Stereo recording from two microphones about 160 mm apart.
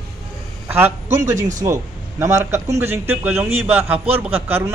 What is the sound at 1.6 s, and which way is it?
A man's voice, 20° right (ahead or behind).